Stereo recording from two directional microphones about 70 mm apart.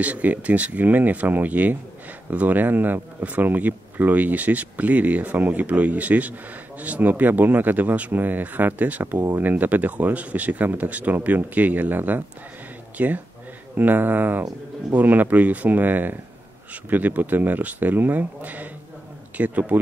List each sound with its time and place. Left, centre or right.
0.0 s speech: right